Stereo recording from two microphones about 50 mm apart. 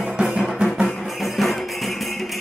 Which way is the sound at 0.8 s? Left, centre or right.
Centre.